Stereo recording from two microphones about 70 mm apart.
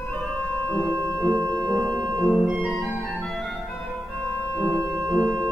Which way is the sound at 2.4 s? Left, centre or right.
Centre.